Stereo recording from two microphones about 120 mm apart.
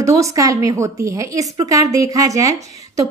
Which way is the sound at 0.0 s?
25° right (ahead or behind).